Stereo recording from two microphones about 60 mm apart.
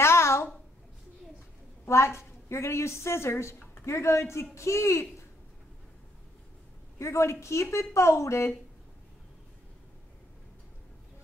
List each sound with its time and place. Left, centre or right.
0.0 s a sound: left
1.9 s a woman's voice: left
7.0 s a woman's voice: left